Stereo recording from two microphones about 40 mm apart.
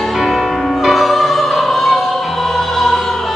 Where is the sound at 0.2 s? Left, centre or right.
Centre.